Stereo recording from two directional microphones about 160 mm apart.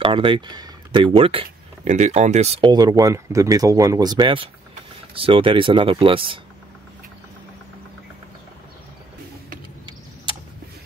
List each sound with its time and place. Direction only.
0.0 s speech: 35° right (ahead or behind)
2.7 s speech: 25° right (ahead or behind)